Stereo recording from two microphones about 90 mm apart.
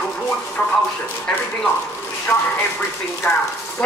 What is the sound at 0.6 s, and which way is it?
Speech, 15° left (ahead or behind).